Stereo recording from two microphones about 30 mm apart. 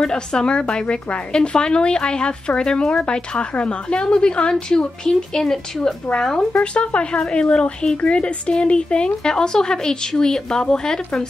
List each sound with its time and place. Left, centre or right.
0.0 s a woman's voice: left
6.5 s a woman's voice: left
9.3 s speech: left